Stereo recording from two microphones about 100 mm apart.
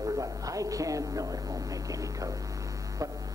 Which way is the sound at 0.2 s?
35° right (ahead or behind).